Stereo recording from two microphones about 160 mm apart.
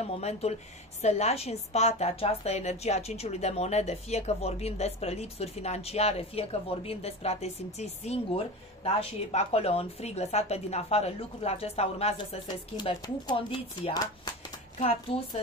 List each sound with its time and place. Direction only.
0.0 s a woman's voice: 40° left (ahead or behind)
12.4 s a woman's voice: 25° left (ahead or behind)